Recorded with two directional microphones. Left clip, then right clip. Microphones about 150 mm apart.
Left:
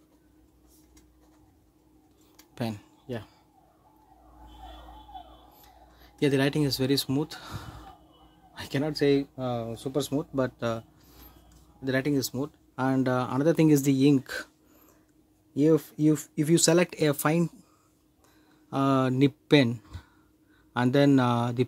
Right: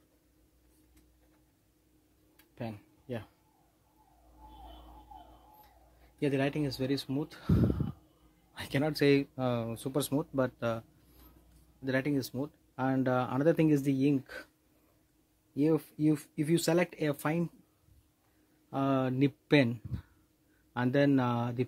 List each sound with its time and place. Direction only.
6.1 s speech: 15° left (ahead or behind)
8.5 s a sound: 15° right (ahead or behind)
8.9 s speech: 35° right (ahead or behind)
10.3 s speech: 5° right (ahead or behind); by 14.5 s 25° left (ahead or behind)
15.5 s speech: 5° left (ahead or behind)
18.7 s speech: 10° left (ahead or behind)